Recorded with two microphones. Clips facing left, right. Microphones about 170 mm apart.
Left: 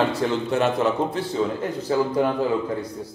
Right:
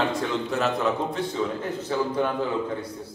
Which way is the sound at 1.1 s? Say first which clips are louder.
Left 3 dB; 35° left (ahead or behind).